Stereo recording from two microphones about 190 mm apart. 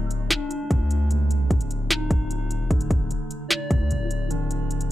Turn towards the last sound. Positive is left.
turn(degrees=0)  # may be behind; listen again after turning